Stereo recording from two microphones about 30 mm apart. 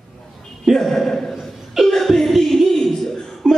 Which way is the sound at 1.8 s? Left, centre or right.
Centre.